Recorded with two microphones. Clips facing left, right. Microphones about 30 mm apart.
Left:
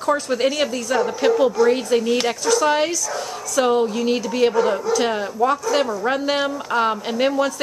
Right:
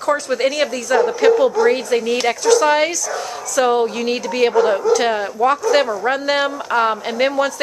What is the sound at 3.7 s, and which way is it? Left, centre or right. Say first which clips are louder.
A woman's voice: right 1 dB; right.